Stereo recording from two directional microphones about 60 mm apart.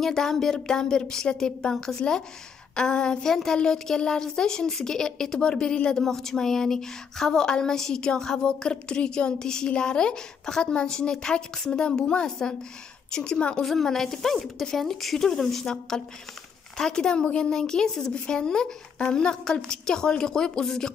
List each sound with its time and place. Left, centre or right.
0.0 s a woman's voice: centre
13.7 s a woman's voice: centre